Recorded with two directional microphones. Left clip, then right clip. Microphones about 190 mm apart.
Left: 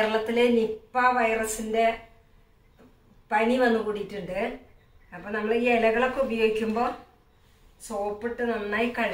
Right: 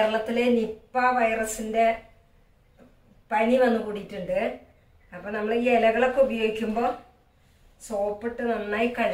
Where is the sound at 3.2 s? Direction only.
Centre (ahead or behind).